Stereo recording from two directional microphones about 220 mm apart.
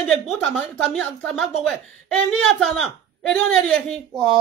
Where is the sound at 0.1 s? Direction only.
Centre (ahead or behind).